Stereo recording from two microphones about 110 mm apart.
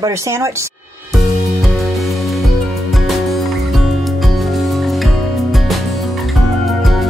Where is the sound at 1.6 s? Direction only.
Centre (ahead or behind).